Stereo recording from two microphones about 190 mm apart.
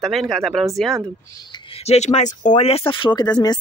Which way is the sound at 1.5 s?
30° left (ahead or behind).